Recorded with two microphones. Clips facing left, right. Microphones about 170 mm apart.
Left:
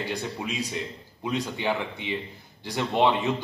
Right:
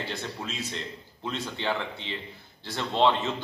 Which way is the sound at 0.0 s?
15° left (ahead or behind).